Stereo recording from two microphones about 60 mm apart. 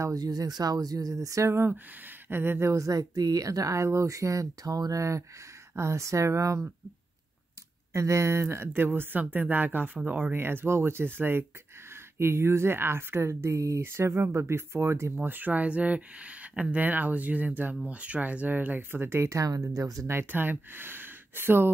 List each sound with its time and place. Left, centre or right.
0.0 s speech: right
2.2 s speech: right
2.7 s speech: right
7.9 s speech: right
10.3 s speech: right
15.2 s speech: right
20.1 s speech: right